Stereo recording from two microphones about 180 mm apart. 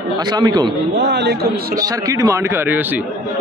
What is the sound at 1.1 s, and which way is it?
Speech, 65° right (ahead or behind).